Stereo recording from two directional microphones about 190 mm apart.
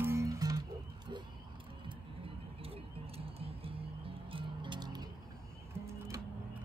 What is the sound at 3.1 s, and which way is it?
Music, 30° right (ahead or behind).